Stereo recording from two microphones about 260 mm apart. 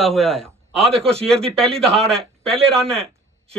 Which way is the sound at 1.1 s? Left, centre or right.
Right.